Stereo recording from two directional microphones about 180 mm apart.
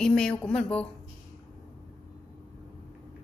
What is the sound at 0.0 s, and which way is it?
Speech, 5° left (ahead or behind).